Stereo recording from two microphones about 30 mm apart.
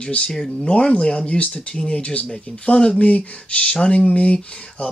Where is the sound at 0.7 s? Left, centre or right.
Left.